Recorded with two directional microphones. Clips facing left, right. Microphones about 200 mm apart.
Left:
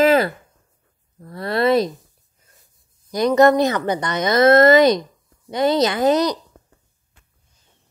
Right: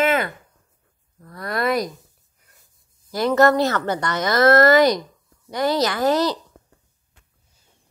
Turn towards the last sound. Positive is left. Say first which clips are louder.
# left 2 dB
turn(degrees=20)  # may be behind; listen again after turning